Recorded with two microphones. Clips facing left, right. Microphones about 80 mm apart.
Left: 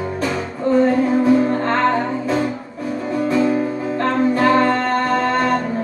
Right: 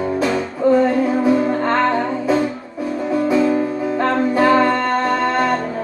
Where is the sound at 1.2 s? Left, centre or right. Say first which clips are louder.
Left 1 dB; centre.